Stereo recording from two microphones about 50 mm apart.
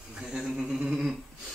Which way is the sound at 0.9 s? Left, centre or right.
Centre.